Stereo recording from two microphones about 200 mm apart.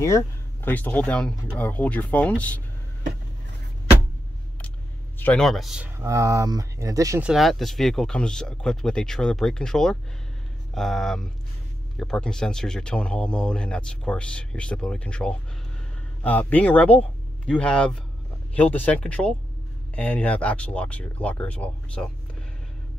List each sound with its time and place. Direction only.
0.0 s speech: 10° left (ahead or behind)
5.2 s speech: 5° left (ahead or behind)
5.9 s speech: 15° right (ahead or behind)
7.2 s speech: centre (ahead or behind)